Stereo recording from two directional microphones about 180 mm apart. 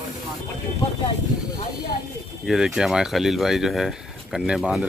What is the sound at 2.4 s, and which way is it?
Speech, centre (ahead or behind).